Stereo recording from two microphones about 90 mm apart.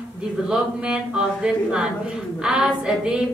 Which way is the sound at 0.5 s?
10° right (ahead or behind).